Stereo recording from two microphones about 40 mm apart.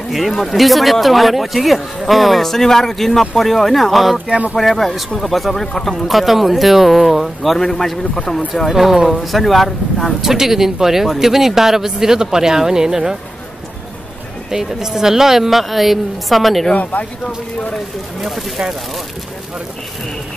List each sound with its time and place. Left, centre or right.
0.4 s speech: centre
6.0 s speech: centre
7.5 s speech: centre
8.6 s a woman's voice: centre
9.2 s speech: centre
10.2 s a woman's voice: centre
14.5 s a woman's voice: centre
16.7 s speech: left